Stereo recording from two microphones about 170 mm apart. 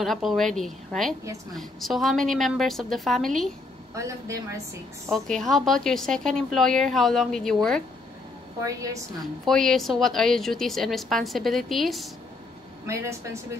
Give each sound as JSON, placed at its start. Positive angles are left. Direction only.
{"t": 0.0, "sound": "a woman's voice", "side_deg": 0}
{"t": 3.9, "sound": "a woman's voice", "side_deg": -20}
{"t": 5.1, "sound": "a woman's voice", "side_deg": 0}
{"t": 8.6, "sound": "a woman's voice", "side_deg": -20}
{"t": 9.2, "sound": "a woman's voice", "side_deg": 0}
{"t": 12.8, "sound": "a woman's voice", "side_deg": -15}